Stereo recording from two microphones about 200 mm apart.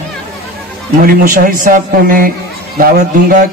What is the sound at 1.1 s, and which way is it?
A man's voice, 45° right (ahead or behind).